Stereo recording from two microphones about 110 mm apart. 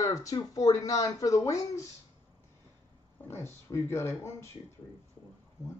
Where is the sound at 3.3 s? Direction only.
25° left (ahead or behind).